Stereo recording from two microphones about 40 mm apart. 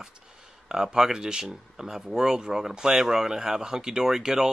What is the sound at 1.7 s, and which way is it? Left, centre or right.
Speech, centre.